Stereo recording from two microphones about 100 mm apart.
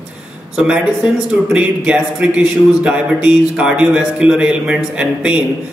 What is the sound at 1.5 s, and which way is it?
Speech, 10° right (ahead or behind).